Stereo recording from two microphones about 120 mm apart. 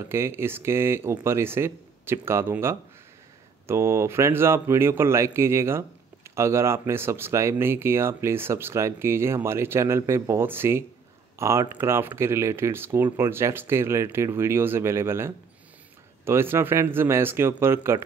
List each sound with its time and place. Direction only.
0.0 s a man's voice: 20° right (ahead or behind)